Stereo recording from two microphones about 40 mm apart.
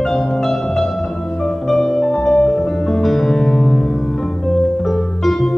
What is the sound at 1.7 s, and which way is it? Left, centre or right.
Music, centre.